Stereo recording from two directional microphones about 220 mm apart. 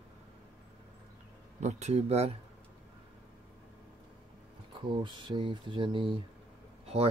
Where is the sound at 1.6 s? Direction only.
30° right (ahead or behind).